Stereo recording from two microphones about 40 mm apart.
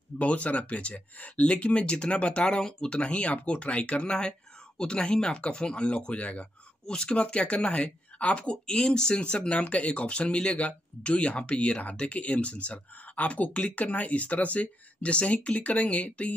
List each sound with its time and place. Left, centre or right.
0.2 s speech: left
3.0 s speech: left
6.9 s speech: left
9.7 s speech: left